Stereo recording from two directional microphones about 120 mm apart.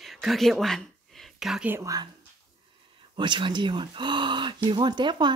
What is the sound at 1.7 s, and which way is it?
Speech, 30° right (ahead or behind).